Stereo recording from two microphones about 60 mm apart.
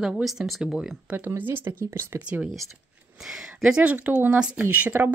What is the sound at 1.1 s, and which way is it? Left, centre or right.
Speech, right.